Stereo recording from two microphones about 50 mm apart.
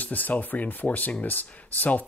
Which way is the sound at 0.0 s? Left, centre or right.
Left.